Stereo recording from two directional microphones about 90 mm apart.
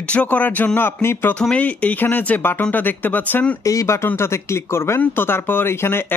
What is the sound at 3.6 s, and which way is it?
A man's voice, 35° left (ahead or behind).